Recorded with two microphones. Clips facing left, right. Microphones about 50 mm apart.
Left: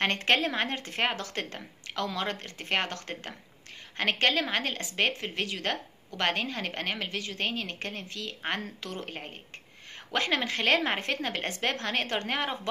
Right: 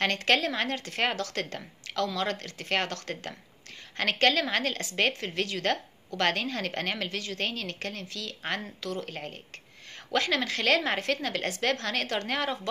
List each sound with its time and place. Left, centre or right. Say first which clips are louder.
0.0 s a woman's voice: even; left